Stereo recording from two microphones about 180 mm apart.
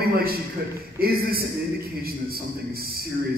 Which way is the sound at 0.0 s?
55° right (ahead or behind).